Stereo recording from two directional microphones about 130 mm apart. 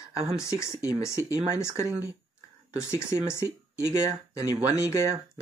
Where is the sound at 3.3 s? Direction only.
20° left (ahead or behind).